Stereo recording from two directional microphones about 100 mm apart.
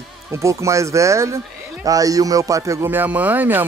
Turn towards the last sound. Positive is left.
turn(degrees=-20)  # may be behind; listen again after turning